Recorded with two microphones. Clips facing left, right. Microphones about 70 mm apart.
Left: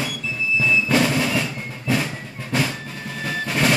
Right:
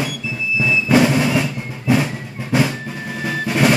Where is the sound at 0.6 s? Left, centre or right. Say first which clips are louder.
Right 4 dB; centre.